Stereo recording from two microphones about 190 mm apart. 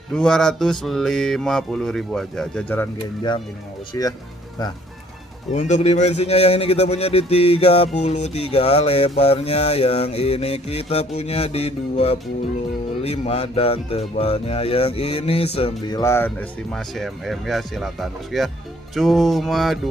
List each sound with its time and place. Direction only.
0.1 s mantra: 5° left (ahead or behind)
3.2 s speech: 25° left (ahead or behind)
5.5 s speech: 35° left (ahead or behind)
16.0 s mantra: 15° left (ahead or behind)